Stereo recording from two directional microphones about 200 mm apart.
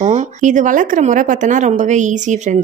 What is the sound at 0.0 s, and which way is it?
Speech, 35° right (ahead or behind).